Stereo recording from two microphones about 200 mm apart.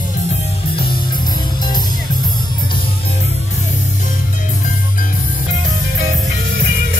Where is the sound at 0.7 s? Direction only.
25° left (ahead or behind).